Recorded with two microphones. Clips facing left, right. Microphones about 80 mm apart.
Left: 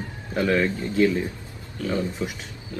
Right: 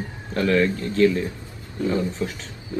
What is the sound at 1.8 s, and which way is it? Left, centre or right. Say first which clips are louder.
Speech: right 3 dB; right.